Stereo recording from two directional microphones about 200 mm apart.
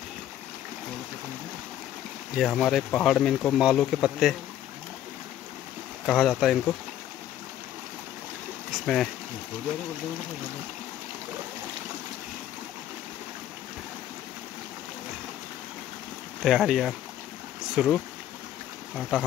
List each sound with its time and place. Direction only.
2.3 s speech: centre (ahead or behind)
6.0 s speech: centre (ahead or behind)
8.7 s speech: centre (ahead or behind)
16.4 s speech: centre (ahead or behind)